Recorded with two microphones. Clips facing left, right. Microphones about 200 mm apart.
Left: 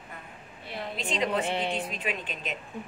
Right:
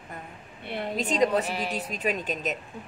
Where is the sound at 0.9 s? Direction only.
40° right (ahead or behind).